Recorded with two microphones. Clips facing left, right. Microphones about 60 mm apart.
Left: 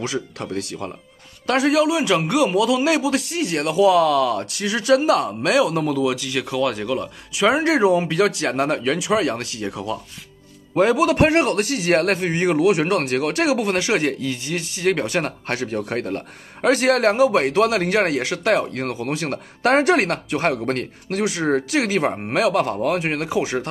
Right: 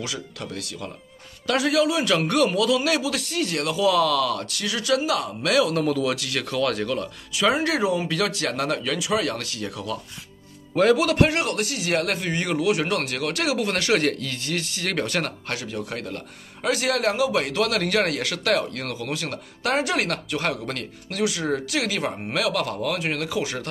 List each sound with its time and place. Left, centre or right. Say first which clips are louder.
0.0 s a man's voice: left 6 dB; left
5.9 s speech: left 3 dB; centre
7.4 s a man's voice: left 5 dB; left
11.1 s a man's voice: left 4 dB; left
12.3 s a man's voice: left 5 dB; left